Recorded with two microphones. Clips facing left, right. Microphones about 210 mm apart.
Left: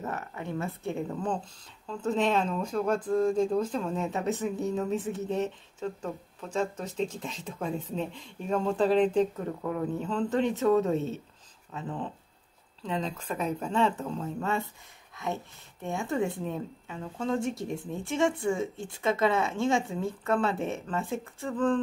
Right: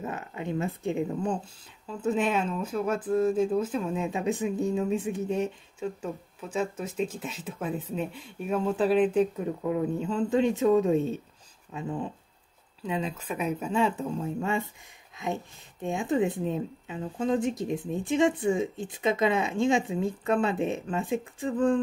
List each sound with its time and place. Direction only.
0.0 s a woman's voice: 15° right (ahead or behind)